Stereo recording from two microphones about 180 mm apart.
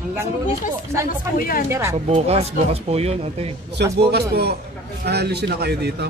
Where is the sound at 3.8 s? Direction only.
65° right (ahead or behind).